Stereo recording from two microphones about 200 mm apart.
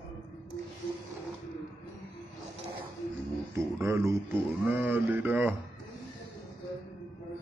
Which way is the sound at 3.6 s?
15° right (ahead or behind).